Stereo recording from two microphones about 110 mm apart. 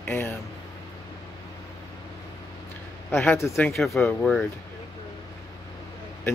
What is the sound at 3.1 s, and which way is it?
Speech, 20° left (ahead or behind).